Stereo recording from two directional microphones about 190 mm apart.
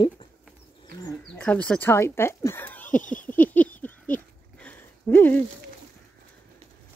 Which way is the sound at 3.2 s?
10° left (ahead or behind).